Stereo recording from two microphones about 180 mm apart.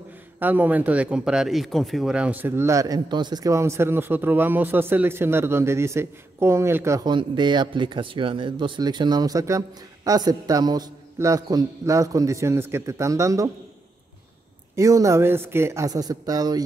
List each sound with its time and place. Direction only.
0.4 s speech: 10° right (ahead or behind)
14.8 s speech: 15° right (ahead or behind)